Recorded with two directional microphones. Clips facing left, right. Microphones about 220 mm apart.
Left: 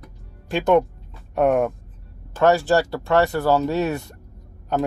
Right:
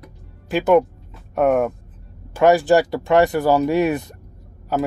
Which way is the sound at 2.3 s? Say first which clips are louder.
Right 3 dB; 15° right (ahead or behind).